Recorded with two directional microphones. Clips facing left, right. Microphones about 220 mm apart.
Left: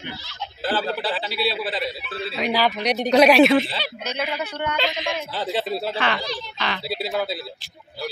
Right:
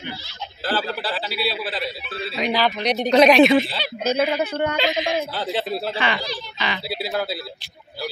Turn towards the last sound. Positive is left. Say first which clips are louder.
# even
turn(degrees=-5)  # may be behind; listen again after turning